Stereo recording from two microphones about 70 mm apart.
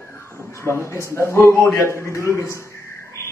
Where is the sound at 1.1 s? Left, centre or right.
Left.